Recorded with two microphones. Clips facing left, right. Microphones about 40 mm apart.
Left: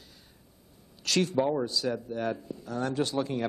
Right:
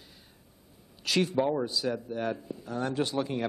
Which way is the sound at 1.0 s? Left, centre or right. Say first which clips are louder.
Even; centre.